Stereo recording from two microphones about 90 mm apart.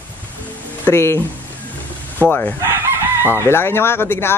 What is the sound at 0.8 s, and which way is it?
Speech, 25° left (ahead or behind).